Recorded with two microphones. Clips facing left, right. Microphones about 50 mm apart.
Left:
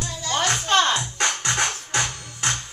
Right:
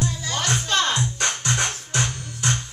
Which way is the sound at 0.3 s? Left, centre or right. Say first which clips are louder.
Left 5 dB; left.